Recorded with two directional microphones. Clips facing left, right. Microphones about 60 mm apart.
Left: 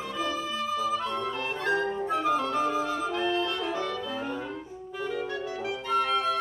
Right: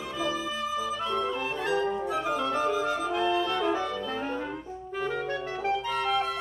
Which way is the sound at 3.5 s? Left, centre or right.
Right.